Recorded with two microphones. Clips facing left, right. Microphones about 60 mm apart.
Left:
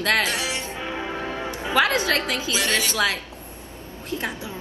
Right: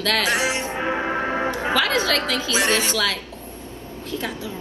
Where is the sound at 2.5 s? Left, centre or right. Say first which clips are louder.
Right 4 dB; right.